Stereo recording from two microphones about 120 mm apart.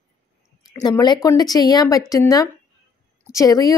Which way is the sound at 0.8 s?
35° left (ahead or behind).